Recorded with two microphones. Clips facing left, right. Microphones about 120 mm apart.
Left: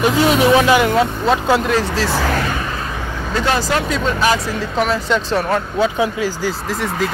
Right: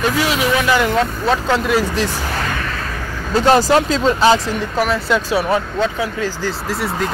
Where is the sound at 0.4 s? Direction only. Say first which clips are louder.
Left 6 dB; 25° left (ahead or behind).